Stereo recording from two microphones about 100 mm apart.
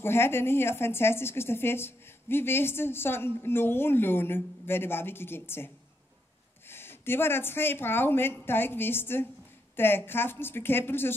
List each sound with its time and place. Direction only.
0.0 s a woman's voice: 25° left (ahead or behind)